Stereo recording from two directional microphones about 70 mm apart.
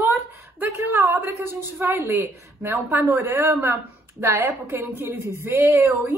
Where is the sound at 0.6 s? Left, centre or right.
Right.